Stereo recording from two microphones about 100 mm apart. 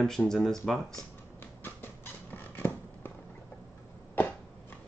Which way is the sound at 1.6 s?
20° left (ahead or behind).